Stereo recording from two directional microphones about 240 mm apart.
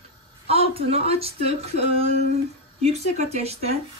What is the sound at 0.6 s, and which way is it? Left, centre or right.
A woman's voice, right.